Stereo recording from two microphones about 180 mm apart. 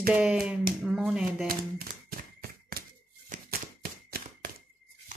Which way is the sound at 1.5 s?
55° right (ahead or behind).